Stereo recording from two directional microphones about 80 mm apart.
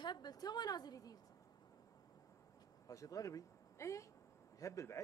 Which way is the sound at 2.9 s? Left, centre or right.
Left.